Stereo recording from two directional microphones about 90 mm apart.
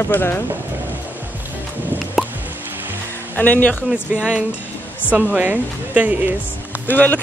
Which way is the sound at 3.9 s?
15° right (ahead or behind).